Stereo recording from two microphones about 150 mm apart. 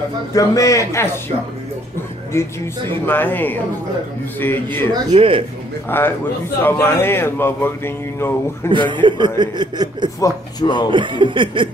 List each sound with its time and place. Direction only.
0.3 s a man's voice: 20° left (ahead or behind)
2.3 s speech: 15° left (ahead or behind)
5.1 s a man's voice: 40° right (ahead or behind)
5.9 s speech: 15° left (ahead or behind)
8.6 s a man's voice: 30° right (ahead or behind)
10.2 s a man's voice: 30° left (ahead or behind)
10.9 s a man's voice: 35° right (ahead or behind)